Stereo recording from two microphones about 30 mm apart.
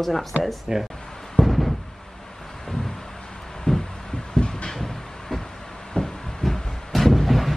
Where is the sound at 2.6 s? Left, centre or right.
Centre.